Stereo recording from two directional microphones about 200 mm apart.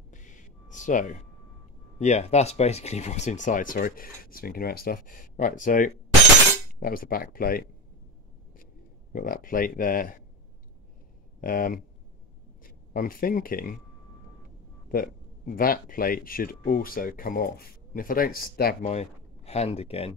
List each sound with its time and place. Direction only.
0.1 s a sound: 40° left (ahead or behind)
2.0 s speech: 35° left (ahead or behind)
9.1 s speech: 45° left (ahead or behind)
11.4 s speech: 45° left (ahead or behind)
14.9 s speech: 45° left (ahead or behind)
18.9 s speech: 35° left (ahead or behind)